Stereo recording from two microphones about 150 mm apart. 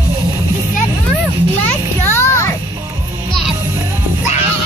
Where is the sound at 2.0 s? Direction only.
15° left (ahead or behind).